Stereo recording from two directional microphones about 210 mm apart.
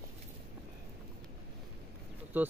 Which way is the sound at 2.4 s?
10° right (ahead or behind).